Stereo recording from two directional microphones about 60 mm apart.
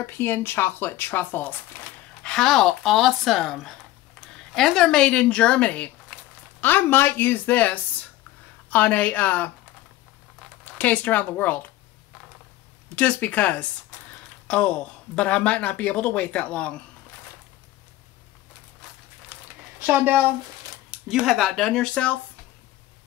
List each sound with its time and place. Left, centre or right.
0.0 s speech: left
2.2 s a woman's voice: centre
6.6 s speech: left
10.8 s speech: left
12.9 s speech: left
15.1 s speech: centre
19.3 s a sound: right
19.9 s speech: right
21.1 s speech: centre
21.4 s a woman's voice: centre